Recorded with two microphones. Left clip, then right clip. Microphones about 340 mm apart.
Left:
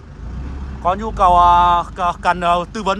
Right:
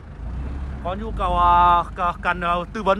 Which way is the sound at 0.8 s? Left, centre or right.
Centre.